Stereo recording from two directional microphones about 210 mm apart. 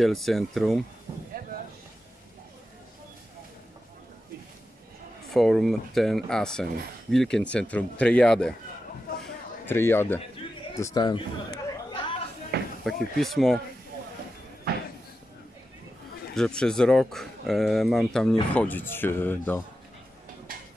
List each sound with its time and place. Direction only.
0.0 s speech: centre (ahead or behind)
5.3 s speech: centre (ahead or behind)
9.2 s a sound: 10° left (ahead or behind)
10.8 s a man's voice: 15° left (ahead or behind)
11.9 s a sound: 25° left (ahead or behind)
12.8 s speech: centre (ahead or behind)
16.3 s speech: 5° left (ahead or behind)